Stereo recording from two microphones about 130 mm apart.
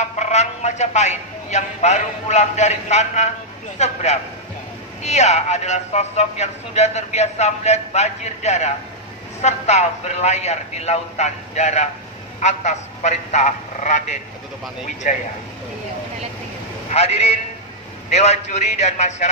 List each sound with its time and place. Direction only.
0.2 s a man's voice: 60° left (ahead or behind)
16.9 s a man's voice: 55° left (ahead or behind)